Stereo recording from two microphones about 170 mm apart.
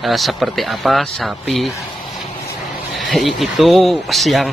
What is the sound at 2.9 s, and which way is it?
Speech, centre (ahead or behind).